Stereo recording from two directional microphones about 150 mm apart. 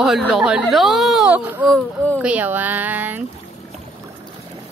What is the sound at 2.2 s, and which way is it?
Speech, 10° right (ahead or behind).